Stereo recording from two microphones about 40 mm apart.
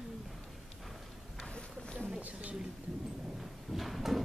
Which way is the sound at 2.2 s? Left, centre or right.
Right.